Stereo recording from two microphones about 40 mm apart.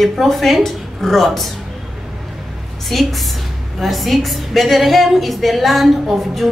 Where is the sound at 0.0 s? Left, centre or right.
Centre.